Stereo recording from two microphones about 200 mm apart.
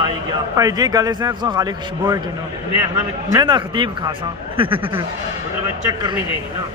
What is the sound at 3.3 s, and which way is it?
A man's voice, 20° right (ahead or behind).